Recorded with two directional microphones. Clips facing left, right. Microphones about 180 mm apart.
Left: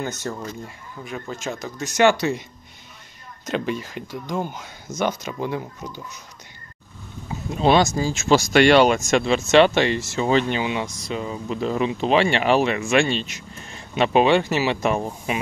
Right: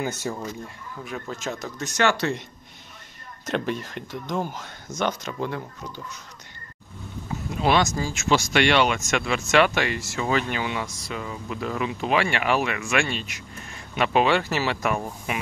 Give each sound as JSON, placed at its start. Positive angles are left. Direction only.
{"t": 0.0, "sound": "speech", "side_deg": -10}
{"t": 2.0, "sound": "speech", "side_deg": 15}
{"t": 3.4, "sound": "speech", "side_deg": 0}
{"t": 7.6, "sound": "speech", "side_deg": 30}
{"t": 8.4, "sound": "speech", "side_deg": 40}